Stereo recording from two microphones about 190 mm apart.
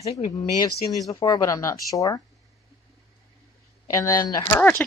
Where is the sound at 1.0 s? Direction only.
20° left (ahead or behind).